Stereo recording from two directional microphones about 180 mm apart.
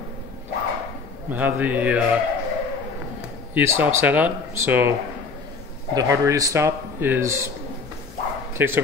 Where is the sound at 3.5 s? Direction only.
10° right (ahead or behind).